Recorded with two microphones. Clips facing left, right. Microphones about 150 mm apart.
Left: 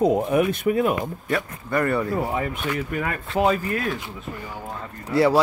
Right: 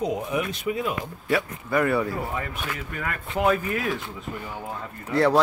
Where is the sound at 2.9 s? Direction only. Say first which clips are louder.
Left 5 dB; 30° left (ahead or behind).